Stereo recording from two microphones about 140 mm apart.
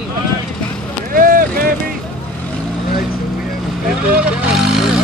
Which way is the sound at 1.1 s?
90° right.